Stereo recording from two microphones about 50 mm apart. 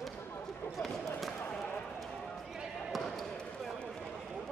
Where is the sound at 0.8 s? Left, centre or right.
Centre.